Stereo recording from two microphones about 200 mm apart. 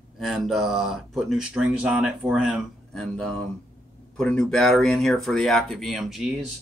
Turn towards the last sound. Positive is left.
turn(degrees=-5)  # may be behind; listen again after turning